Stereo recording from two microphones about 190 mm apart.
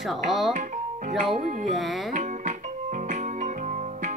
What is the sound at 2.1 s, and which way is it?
Music, 40° right (ahead or behind).